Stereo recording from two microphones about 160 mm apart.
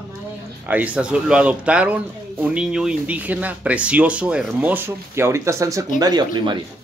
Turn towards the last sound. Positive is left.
turn(degrees=-25)  # may be behind; listen again after turning